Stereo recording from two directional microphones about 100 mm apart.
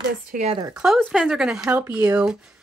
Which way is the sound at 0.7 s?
5° right (ahead or behind).